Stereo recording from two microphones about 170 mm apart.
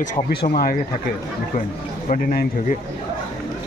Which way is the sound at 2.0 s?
50° left (ahead or behind).